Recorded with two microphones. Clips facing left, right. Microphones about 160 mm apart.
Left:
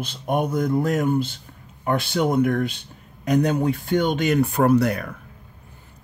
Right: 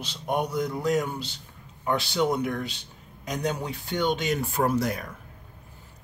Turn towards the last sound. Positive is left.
turn(degrees=65)  # may be behind; listen again after turning